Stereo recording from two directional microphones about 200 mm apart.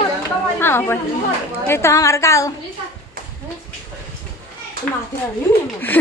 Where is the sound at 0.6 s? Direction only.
10° left (ahead or behind).